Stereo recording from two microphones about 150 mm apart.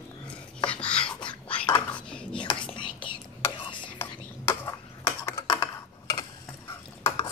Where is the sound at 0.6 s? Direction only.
5° left (ahead or behind).